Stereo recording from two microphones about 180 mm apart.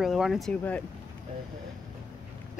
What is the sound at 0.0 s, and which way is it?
Speech, centre (ahead or behind).